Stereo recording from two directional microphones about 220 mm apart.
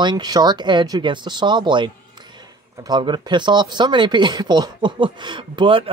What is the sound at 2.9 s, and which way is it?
Speech, 20° right (ahead or behind).